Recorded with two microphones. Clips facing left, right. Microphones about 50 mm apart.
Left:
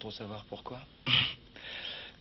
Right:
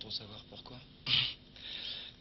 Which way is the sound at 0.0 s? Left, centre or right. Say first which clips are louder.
Left 6 dB; left.